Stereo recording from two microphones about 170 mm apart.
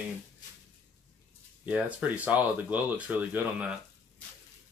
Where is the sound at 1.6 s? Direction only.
10° right (ahead or behind).